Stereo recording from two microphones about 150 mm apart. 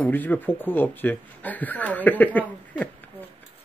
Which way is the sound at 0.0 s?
10° left (ahead or behind).